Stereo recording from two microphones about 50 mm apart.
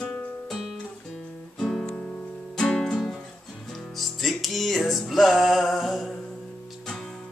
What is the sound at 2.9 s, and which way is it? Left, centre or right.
Music, centre.